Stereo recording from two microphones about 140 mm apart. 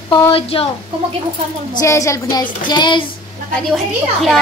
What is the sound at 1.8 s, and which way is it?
Speech, 20° left (ahead or behind).